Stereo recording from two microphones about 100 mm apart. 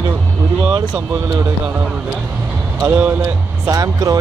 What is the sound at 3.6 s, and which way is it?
Speech, 35° right (ahead or behind).